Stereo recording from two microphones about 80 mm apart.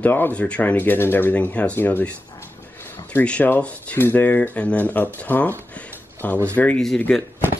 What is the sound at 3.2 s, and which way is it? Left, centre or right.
Speech, centre.